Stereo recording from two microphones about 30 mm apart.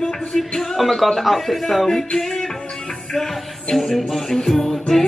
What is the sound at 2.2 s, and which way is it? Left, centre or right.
Music, centre.